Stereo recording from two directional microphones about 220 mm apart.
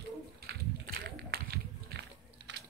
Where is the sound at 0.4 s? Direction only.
45° right (ahead or behind).